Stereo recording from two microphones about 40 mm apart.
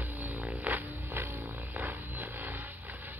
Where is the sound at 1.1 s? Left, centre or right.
Right.